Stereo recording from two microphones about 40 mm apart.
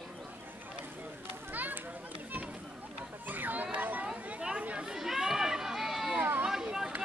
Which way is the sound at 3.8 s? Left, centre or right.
Right.